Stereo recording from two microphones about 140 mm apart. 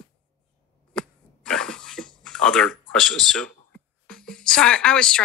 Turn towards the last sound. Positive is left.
turn(degrees=5)  # may be behind; listen again after turning